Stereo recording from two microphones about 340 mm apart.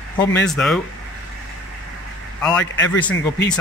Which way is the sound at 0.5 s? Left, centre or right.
Centre.